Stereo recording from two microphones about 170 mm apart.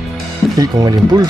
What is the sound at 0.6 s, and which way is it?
Speech, 20° right (ahead or behind).